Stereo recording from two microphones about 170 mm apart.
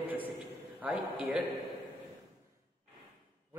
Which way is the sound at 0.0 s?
10° right (ahead or behind).